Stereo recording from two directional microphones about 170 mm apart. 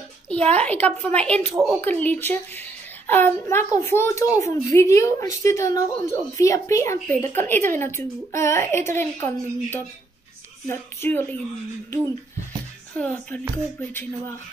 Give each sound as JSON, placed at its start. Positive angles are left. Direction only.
{"t": 0.3, "sound": "a woman's voice", "side_deg": 5}
{"t": 1.8, "sound": "a woman's voice", "side_deg": 10}
{"t": 12.9, "sound": "a woman's voice", "side_deg": 5}